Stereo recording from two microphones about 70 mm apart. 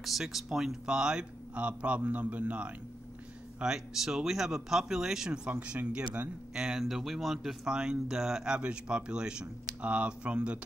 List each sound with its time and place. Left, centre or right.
0.0 s speech: centre